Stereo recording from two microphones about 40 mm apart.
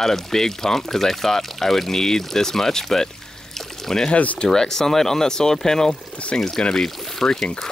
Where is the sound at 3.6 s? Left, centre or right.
Centre.